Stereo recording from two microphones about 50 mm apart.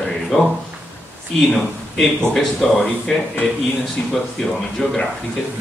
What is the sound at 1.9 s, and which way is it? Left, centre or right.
Speech, centre.